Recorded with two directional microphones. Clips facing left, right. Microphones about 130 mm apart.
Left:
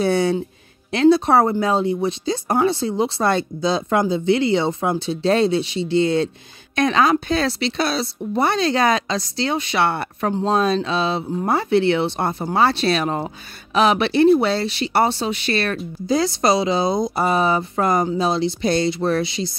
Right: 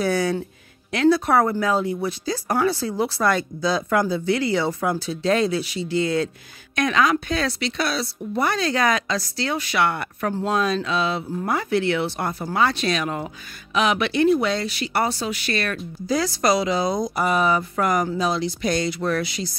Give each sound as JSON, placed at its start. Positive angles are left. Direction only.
{"t": 0.0, "sound": "speech", "side_deg": 25}